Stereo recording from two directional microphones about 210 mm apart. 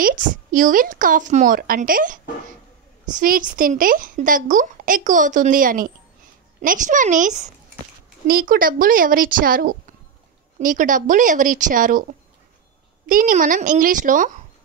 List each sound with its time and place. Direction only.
0.0 s a woman's voice: 40° right (ahead or behind)
3.2 s a woman's voice: 40° right (ahead or behind)